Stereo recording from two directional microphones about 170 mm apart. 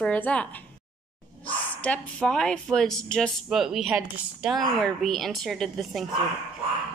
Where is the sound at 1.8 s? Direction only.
5° left (ahead or behind).